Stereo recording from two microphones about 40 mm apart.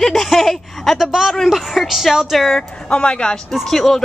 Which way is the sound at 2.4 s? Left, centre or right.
Centre.